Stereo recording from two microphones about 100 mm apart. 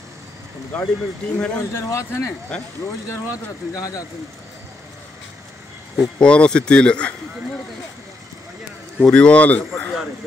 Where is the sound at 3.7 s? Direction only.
35° left (ahead or behind).